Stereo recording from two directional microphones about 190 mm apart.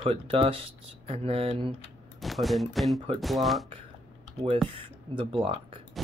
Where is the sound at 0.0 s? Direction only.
30° right (ahead or behind).